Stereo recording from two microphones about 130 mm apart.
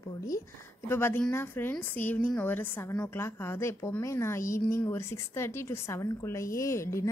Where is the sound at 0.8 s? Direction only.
20° left (ahead or behind).